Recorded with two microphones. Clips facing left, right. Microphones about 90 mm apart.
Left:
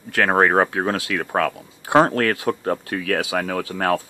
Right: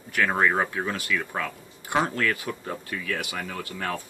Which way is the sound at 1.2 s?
60° left (ahead or behind).